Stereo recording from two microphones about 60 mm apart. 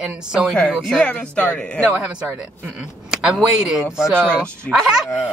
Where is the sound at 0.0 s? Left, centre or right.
Centre.